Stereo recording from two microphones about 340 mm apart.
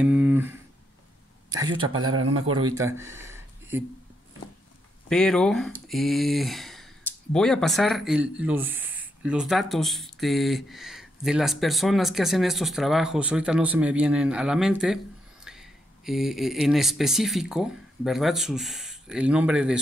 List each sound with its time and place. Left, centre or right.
0.0 s speech: centre
1.9 s a man's voice: right
2.8 s a sound: centre
5.1 s speech: centre